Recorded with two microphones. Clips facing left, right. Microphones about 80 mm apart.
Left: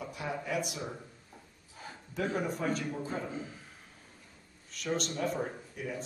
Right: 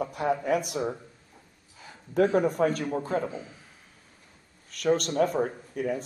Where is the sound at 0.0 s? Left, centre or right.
Right.